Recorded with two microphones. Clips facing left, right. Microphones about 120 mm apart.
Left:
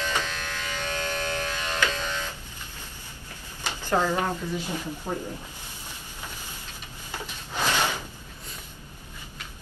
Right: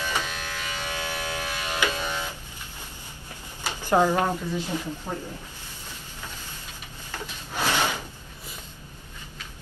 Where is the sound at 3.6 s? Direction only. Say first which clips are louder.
Right 4 dB; 15° right (ahead or behind).